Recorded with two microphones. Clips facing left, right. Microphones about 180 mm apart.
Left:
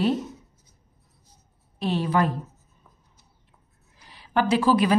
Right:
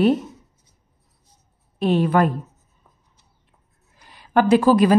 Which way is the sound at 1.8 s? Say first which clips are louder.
Right 6 dB; 55° right (ahead or behind).